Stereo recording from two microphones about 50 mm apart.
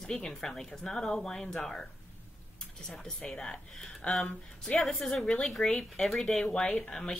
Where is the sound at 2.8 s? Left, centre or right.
Centre.